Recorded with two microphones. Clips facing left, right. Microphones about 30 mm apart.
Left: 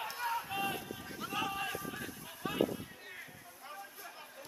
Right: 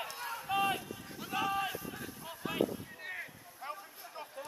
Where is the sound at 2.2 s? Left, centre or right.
Centre.